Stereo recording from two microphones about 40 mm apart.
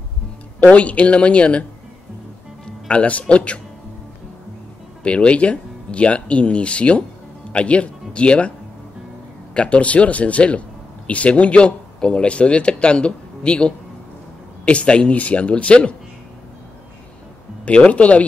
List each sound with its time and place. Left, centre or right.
0.6 s speech: left
5.0 s speech: left
17.6 s speech: left